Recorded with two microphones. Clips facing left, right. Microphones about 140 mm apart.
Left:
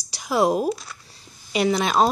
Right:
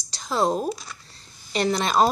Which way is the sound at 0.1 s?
10° left (ahead or behind).